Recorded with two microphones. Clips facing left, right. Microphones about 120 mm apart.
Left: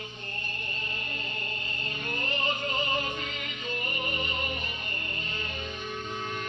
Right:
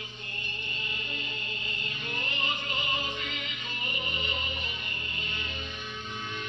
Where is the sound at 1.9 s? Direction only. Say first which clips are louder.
Left 5 dB; 40° left (ahead or behind).